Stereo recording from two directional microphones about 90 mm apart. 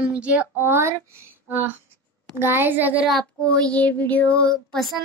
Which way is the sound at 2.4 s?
25° right (ahead or behind).